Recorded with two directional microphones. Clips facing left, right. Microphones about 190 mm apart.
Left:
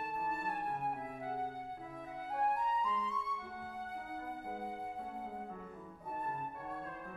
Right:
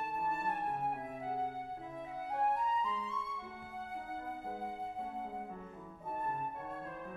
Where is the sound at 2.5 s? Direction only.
25° right (ahead or behind).